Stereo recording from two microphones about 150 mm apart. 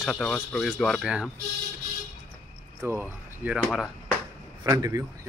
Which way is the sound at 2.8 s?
15° right (ahead or behind).